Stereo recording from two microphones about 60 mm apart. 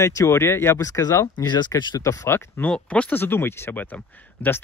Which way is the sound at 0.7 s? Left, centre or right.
Left.